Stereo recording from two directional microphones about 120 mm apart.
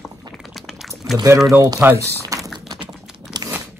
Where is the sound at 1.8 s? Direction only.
20° right (ahead or behind).